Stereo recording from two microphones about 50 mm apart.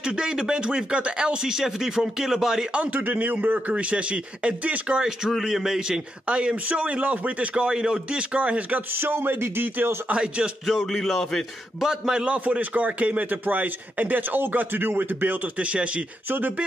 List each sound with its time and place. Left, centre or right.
0.0 s speech: centre
2.7 s a man's voice: right
3.1 s a man's voice: right
3.5 s a man's voice: right
5.3 s a man's voice: centre
6.2 s a man's voice: right
8.9 s speech: right
10.1 s a man's voice: right
10.7 s speech: centre
11.8 s speech: centre
12.3 s a man's voice: right
15.6 s a man's voice: right
16.3 s a man's voice: right